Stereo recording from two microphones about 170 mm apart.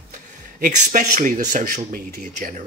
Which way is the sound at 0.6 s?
50° right (ahead or behind).